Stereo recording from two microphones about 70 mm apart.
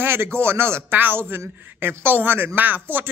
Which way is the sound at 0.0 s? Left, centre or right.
Right.